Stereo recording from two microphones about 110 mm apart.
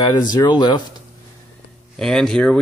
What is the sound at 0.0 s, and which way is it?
Speech, 45° left (ahead or behind).